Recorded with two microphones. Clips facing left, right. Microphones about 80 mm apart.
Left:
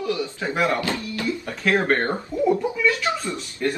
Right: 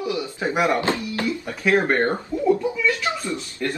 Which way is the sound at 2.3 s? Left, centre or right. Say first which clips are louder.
Left 2 dB; left.